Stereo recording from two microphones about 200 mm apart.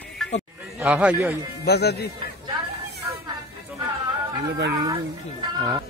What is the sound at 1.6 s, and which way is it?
Speech, 55° left (ahead or behind).